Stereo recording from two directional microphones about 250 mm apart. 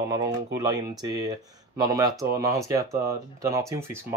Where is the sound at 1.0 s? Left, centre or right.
Centre.